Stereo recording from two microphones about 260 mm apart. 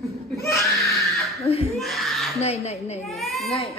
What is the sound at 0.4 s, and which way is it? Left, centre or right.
Baby cry, centre.